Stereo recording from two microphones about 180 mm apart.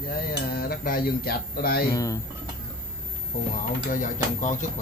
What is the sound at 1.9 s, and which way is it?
Speech, 20° left (ahead or behind).